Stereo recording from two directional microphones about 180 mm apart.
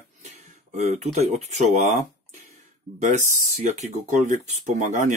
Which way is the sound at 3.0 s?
40° right (ahead or behind).